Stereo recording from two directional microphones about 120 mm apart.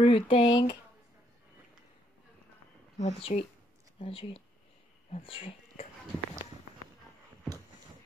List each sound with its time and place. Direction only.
0.0 s speech: 45° left (ahead or behind)
3.0 s speech: 60° left (ahead or behind)